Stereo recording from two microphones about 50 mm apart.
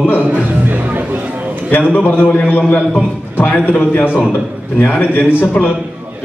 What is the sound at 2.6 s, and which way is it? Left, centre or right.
A man's voice, left.